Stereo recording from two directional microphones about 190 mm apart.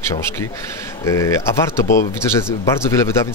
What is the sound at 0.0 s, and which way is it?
Speech, 15° left (ahead or behind).